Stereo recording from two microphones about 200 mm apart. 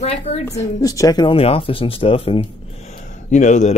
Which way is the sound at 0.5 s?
15° left (ahead or behind).